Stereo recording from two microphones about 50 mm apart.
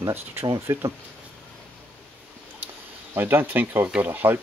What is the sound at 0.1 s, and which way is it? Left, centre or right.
Speech, right.